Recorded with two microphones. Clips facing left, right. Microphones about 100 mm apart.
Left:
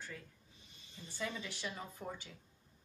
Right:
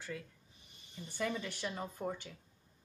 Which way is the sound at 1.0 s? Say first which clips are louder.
Right 5 dB; 55° right (ahead or behind).